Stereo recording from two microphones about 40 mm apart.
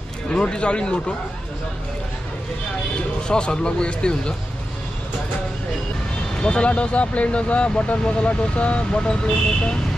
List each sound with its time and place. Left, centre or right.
0.3 s speech: left
3.3 s speech: left
6.4 s speech: left